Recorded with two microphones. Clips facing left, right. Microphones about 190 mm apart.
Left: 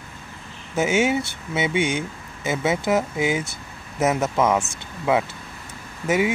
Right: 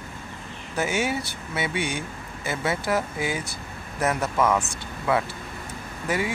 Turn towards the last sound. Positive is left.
turn(degrees=20)  # may be behind; listen again after turning